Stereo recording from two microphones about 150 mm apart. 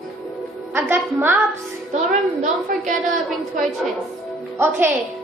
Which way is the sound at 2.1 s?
55° right (ahead or behind).